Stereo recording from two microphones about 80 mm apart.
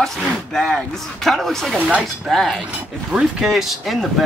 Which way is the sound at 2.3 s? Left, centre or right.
Centre.